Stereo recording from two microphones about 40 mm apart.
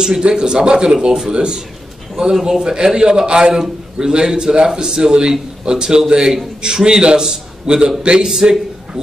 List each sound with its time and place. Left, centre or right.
0.0 s a man's voice: centre